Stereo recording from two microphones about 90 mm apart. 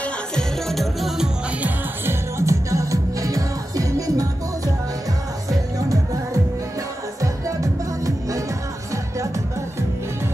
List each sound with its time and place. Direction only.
0.0 s music: 5° left (ahead or behind)
1.6 s music: 30° right (ahead or behind)
5.5 s music: 40° right (ahead or behind)